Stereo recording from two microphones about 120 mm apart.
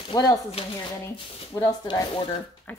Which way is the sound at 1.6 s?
35° left (ahead or behind).